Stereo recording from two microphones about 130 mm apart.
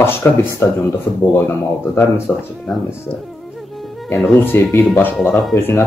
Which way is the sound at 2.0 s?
15° left (ahead or behind).